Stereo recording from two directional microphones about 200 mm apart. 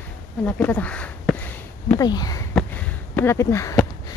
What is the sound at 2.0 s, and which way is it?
Speech, 20° left (ahead or behind).